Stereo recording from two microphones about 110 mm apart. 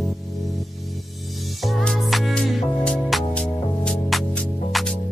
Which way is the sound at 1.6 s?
Centre (ahead or behind).